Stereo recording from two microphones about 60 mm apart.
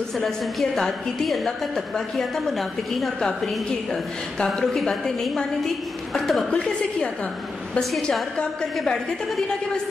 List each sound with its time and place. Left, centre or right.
0.2 s a woman's voice: centre
4.5 s a woman's voice: centre
6.5 s a woman's voice: centre